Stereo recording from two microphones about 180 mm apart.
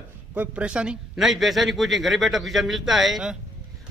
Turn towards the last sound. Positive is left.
turn(degrees=-5)  # may be behind; listen again after turning